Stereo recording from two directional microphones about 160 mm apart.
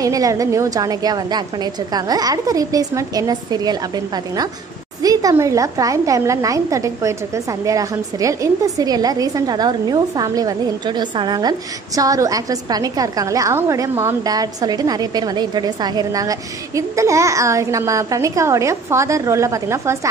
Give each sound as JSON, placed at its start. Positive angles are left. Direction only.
{"t": 0.0, "sound": "a woman's voice", "side_deg": -20}
{"t": 5.0, "sound": "a woman's voice", "side_deg": -20}